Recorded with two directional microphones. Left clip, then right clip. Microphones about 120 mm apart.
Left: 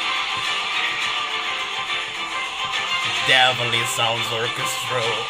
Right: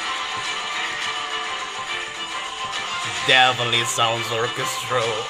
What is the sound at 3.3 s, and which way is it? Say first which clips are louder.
Speech: right 1 dB; 35° right (ahead or behind).